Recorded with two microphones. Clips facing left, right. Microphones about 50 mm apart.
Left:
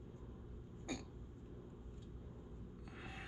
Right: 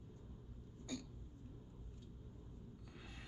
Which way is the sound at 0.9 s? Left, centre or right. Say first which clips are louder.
Left 1 dB; left.